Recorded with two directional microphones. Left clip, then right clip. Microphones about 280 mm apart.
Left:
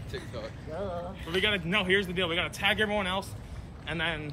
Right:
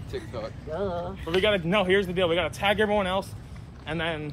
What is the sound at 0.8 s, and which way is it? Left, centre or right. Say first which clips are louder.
Speech: right 5 dB; right.